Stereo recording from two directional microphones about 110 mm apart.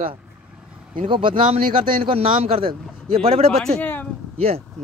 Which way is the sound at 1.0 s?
50° right (ahead or behind).